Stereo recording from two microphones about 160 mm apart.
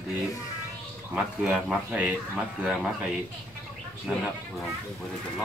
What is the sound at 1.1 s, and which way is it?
Speech, 10° right (ahead or behind).